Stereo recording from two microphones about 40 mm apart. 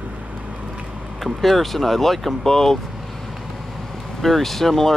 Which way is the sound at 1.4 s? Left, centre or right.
Centre.